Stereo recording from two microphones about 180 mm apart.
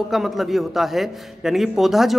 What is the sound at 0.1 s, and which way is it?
A man's voice, centre (ahead or behind).